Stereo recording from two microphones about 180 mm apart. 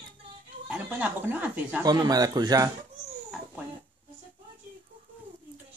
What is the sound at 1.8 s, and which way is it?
Speech, 20° right (ahead or behind).